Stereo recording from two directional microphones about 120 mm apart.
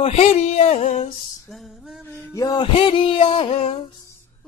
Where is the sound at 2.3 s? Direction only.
30° left (ahead or behind).